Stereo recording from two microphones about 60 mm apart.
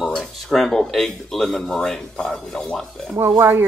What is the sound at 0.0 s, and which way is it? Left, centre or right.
Speech, centre.